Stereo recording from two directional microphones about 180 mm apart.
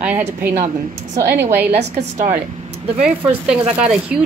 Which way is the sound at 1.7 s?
40° right (ahead or behind).